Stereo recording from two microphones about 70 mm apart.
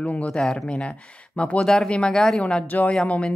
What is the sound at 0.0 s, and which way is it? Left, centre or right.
Speech, centre.